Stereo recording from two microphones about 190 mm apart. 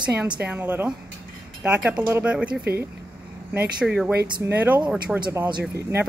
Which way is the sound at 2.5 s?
55° right (ahead or behind).